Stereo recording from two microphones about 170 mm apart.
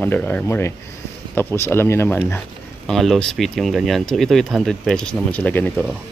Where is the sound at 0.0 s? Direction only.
10° left (ahead or behind).